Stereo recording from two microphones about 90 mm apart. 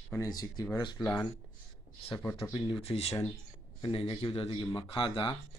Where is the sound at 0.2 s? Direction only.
45° left (ahead or behind).